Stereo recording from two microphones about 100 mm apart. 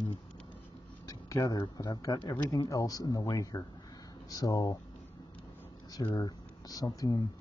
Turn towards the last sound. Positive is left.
turn(degrees=40)  # may be behind; listen again after turning